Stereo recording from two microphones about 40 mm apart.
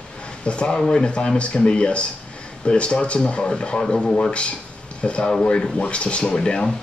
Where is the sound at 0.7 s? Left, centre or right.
Centre.